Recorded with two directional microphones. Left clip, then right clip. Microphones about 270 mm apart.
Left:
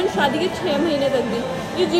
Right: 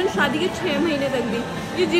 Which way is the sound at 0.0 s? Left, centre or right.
Centre.